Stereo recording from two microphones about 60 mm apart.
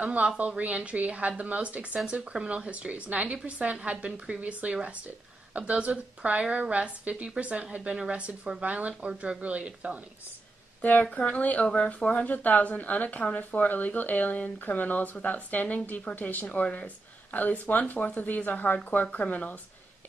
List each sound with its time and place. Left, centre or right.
0.0 s a woman's voice: right
10.8 s speech: left